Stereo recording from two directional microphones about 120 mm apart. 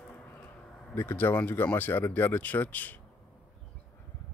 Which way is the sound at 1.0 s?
15° left (ahead or behind).